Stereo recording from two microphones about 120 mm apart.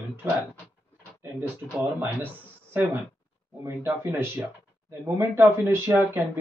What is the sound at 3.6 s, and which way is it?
Speech, 20° right (ahead or behind).